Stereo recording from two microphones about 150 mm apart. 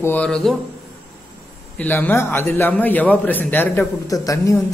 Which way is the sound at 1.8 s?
10° left (ahead or behind).